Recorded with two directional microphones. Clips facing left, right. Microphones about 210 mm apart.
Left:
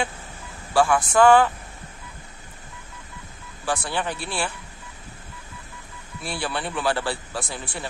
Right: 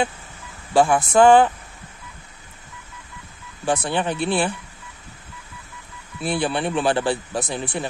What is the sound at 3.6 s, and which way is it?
Speech, 20° right (ahead or behind).